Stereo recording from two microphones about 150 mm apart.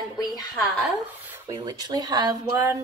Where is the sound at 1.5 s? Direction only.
25° right (ahead or behind).